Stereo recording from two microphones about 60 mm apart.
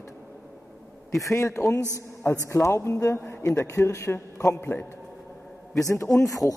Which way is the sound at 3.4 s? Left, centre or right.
Left.